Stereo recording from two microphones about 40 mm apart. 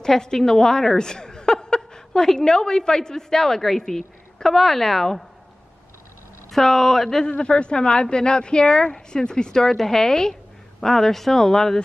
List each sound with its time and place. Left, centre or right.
0.0 s a woman's voice: centre
6.5 s speech: centre
7.2 s a woman's voice: left